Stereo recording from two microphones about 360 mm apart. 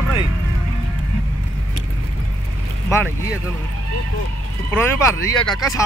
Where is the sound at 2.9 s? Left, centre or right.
Centre.